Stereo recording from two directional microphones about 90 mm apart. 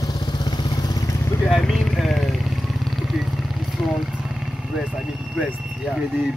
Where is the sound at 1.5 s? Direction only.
Centre (ahead or behind).